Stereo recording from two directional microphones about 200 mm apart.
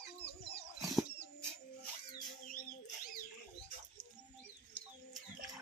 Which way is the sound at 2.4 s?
45° left (ahead or behind).